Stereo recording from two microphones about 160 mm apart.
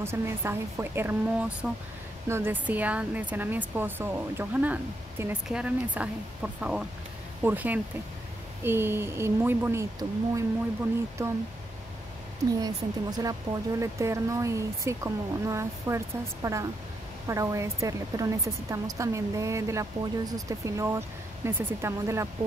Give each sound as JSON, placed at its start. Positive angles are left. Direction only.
{"t": 0.0, "sound": "speech", "side_deg": -15}
{"t": 12.6, "sound": "a woman's voice", "side_deg": -25}
{"t": 17.3, "sound": "a woman's voice", "side_deg": -20}